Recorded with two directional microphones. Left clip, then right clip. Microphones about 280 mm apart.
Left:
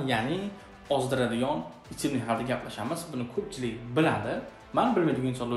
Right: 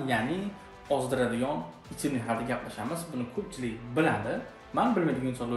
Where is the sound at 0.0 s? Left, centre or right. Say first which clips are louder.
Left 1 dB; centre.